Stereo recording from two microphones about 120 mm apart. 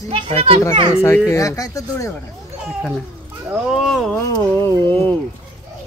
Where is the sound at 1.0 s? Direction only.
20° left (ahead or behind).